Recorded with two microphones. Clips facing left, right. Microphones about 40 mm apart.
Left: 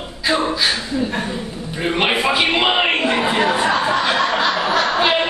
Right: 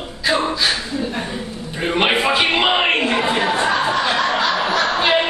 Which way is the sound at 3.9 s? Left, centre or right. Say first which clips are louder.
Left 1 dB; centre.